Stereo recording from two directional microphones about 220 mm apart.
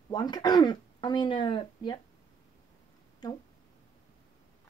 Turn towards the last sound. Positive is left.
turn(degrees=15)  # may be behind; listen again after turning